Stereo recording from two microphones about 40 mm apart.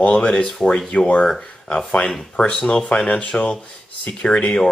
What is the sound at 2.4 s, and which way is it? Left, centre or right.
Speech, left.